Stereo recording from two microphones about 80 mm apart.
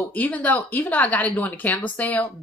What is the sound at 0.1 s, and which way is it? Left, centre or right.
A woman's voice, centre.